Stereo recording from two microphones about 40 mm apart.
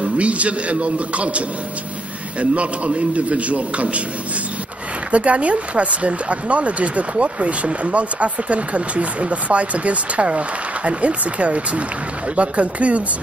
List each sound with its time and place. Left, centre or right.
0.0 s speech: right
2.5 s speech: right
5.1 s speech: right